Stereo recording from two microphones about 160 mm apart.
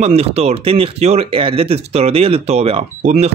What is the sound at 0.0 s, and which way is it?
Speech, 40° right (ahead or behind).